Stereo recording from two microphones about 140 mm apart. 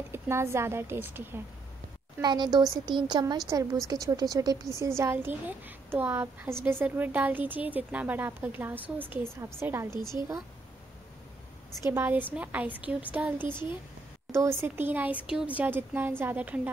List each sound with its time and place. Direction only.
0.1 s a woman's voice: 20° right (ahead or behind)
2.2 s a woman's voice: 30° right (ahead or behind)
11.9 s a woman's voice: 15° right (ahead or behind)